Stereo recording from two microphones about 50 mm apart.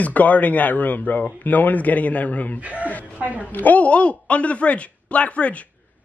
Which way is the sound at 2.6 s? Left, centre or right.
Right.